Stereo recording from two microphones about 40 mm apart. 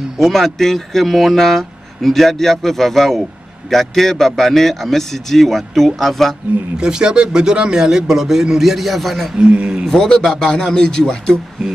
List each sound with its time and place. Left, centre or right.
0.2 s speech: centre
6.8 s a man's voice: centre
9.4 s speech: right
9.8 s a man's voice: centre